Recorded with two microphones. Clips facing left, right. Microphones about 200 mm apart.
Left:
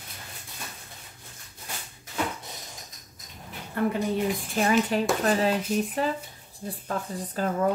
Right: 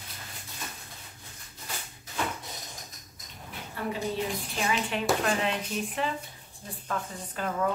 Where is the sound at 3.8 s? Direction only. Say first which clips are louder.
Left 8 dB; 55° left (ahead or behind).